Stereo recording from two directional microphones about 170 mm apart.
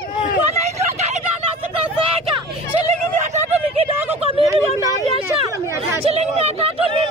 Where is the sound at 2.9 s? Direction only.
40° right (ahead or behind).